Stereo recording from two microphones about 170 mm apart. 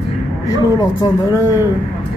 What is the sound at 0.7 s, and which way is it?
Speech, 20° left (ahead or behind).